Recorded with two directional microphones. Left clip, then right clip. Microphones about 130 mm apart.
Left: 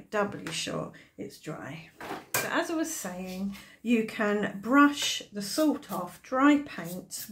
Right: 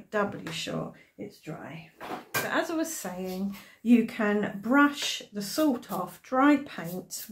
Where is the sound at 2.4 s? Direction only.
15° left (ahead or behind).